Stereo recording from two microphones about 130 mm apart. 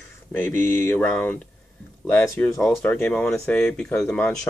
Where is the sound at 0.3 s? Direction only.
15° left (ahead or behind).